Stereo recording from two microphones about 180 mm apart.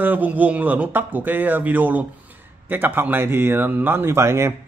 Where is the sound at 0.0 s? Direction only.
10° right (ahead or behind).